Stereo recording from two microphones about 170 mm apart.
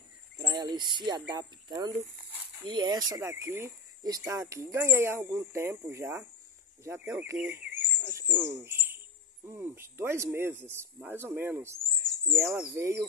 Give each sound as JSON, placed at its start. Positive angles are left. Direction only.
{"t": 0.4, "sound": "speech", "side_deg": -25}
{"t": 8.5, "sound": "owl", "side_deg": -15}
{"t": 9.5, "sound": "speech", "side_deg": -15}